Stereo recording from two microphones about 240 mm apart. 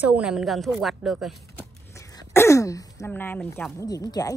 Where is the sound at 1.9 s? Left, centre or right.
Centre.